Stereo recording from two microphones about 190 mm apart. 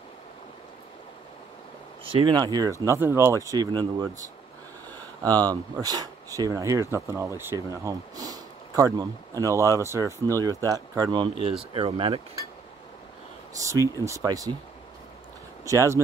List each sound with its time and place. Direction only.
2.0 s speech: 25° right (ahead or behind)
13.6 s speech: 15° right (ahead or behind)
15.6 s speech: 15° right (ahead or behind)